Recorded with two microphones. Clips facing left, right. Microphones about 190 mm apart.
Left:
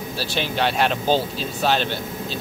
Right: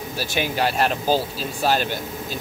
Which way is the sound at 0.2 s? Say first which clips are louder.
Even; 10° right (ahead or behind).